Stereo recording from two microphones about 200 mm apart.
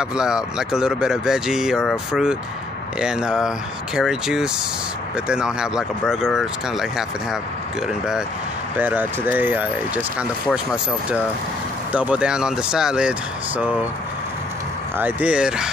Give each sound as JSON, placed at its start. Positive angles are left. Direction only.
{"t": 0.0, "sound": "speech", "side_deg": -5}
{"t": 8.7, "sound": "speech", "side_deg": -10}
{"t": 15.0, "sound": "speech", "side_deg": -10}